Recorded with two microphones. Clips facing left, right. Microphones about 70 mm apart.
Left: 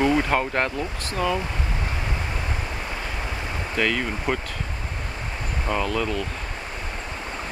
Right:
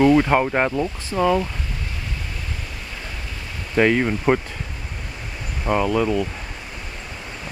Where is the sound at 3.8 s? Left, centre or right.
Right.